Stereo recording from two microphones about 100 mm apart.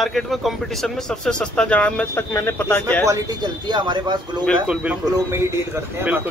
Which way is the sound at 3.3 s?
50° right (ahead or behind).